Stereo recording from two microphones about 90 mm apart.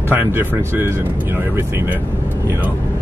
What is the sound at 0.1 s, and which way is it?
Speech, 20° right (ahead or behind).